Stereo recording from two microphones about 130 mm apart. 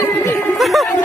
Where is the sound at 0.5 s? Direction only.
Centre (ahead or behind).